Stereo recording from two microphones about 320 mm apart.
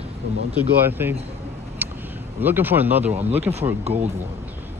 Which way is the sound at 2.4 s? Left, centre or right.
Centre.